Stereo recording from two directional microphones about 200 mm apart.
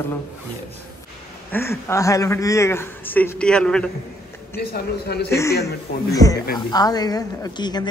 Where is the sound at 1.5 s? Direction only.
10° left (ahead or behind).